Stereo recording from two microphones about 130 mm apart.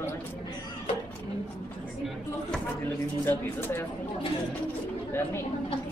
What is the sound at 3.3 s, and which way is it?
Speech, 15° left (ahead or behind).